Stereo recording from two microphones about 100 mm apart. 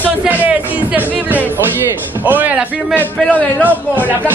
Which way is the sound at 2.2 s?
15° right (ahead or behind).